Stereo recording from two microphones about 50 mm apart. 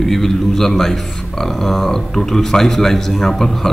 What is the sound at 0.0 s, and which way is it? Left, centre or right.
A man's voice, centre.